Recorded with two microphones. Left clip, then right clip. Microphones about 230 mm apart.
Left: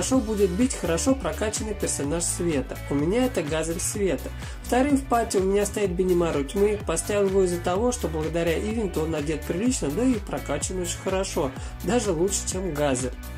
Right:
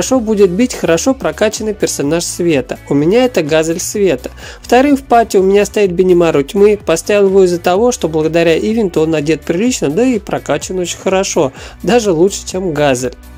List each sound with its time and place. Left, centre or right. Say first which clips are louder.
0.0 s speech: right 13 dB; right